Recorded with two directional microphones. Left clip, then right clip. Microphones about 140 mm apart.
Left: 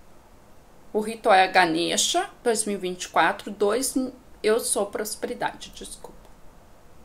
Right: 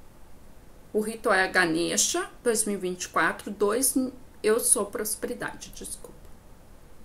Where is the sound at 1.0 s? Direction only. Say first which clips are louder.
Left 5 dB; 35° right (ahead or behind).